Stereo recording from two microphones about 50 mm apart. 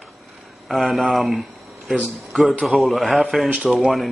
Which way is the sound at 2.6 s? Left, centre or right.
Centre.